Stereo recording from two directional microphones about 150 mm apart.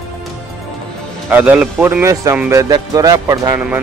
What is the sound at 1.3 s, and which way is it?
Speech, 10° right (ahead or behind).